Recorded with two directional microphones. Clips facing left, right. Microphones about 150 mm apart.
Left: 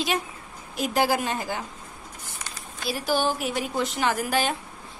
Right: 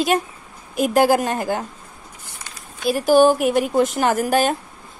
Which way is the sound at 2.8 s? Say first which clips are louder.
Right 11 dB; 45° right (ahead or behind).